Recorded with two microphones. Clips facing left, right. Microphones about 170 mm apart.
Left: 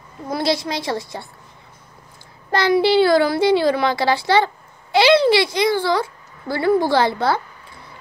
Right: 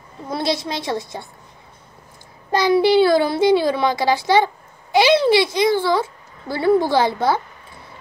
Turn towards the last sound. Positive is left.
turn(degrees=-20)  # may be behind; listen again after turning